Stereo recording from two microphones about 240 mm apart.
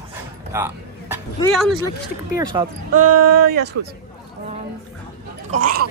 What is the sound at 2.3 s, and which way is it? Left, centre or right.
Speech, centre.